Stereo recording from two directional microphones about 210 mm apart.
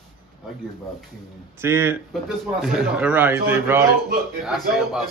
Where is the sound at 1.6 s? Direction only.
10° right (ahead or behind).